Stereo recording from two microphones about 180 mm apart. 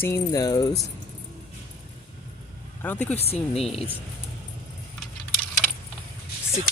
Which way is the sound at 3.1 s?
35° left (ahead or behind).